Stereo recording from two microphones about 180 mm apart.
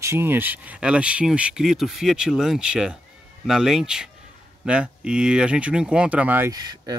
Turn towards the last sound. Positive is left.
turn(degrees=-20)  # may be behind; listen again after turning